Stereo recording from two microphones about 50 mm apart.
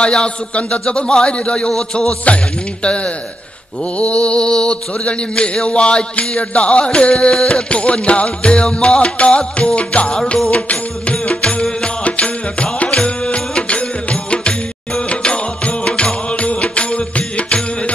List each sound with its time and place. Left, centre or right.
0.0 s music: centre